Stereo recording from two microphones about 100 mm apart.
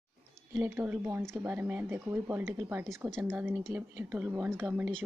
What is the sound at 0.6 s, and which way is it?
Speech, 20° right (ahead or behind).